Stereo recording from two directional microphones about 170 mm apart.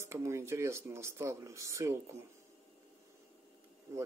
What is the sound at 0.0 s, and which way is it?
Speech, 15° right (ahead or behind).